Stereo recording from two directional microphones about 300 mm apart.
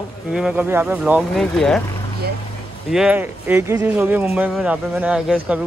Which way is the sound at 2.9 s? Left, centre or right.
Centre.